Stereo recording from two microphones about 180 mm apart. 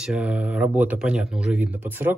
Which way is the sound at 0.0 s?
5° right (ahead or behind).